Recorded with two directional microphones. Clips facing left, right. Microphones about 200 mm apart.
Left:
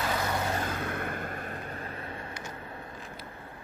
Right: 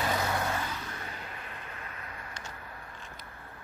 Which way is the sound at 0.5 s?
50° left (ahead or behind).